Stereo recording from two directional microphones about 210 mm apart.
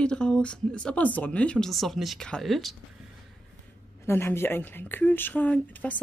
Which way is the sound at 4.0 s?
10° left (ahead or behind).